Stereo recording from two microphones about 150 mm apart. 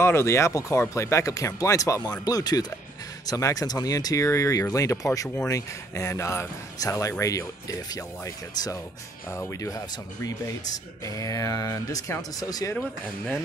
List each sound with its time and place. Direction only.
0.0 s speech: 15° left (ahead or behind)